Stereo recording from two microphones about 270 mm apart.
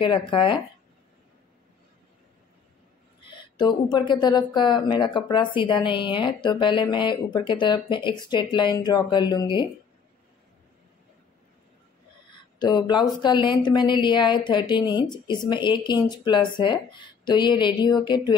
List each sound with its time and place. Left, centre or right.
0.0 s speech: centre
3.3 s speech: centre
12.5 s speech: centre